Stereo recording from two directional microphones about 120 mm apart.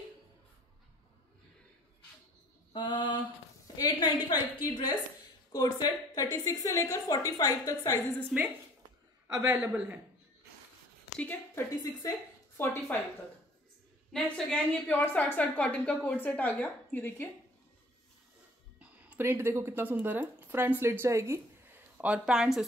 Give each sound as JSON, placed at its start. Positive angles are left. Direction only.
{"t": 2.7, "sound": "mantra", "side_deg": 40}
{"t": 3.6, "sound": "a woman's voice", "side_deg": 30}
{"t": 5.5, "sound": "a woman's voice", "side_deg": 30}
{"t": 8.3, "sound": "a woman's voice", "side_deg": -5}
{"t": 9.3, "sound": "a man's voice", "side_deg": -25}
{"t": 11.1, "sound": "a woman's voice", "side_deg": 15}
{"t": 11.8, "sound": "a woman's voice", "side_deg": 30}
{"t": 14.1, "sound": "a woman's voice", "side_deg": 10}
{"t": 18.8, "sound": "speech", "side_deg": -15}